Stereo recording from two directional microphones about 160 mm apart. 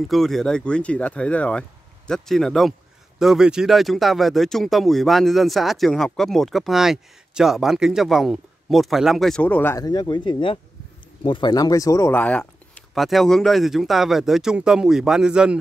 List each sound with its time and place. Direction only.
0.1 s speech: centre (ahead or behind)
9.8 s speech: 25° left (ahead or behind); by 15.5 s 5° right (ahead or behind)